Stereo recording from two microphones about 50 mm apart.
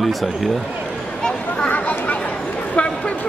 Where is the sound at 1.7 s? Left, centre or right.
Left.